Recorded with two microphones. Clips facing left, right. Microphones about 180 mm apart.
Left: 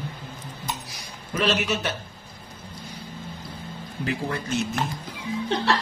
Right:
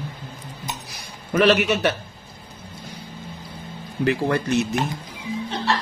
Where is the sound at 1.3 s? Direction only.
65° right (ahead or behind).